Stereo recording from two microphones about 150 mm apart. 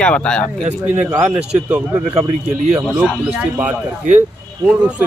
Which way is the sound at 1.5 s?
10° right (ahead or behind).